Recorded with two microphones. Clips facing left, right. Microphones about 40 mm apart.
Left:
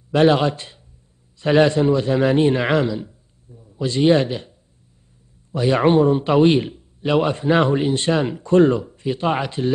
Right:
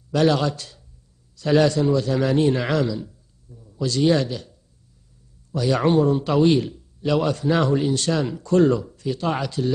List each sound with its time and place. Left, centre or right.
0.1 s a man's voice: left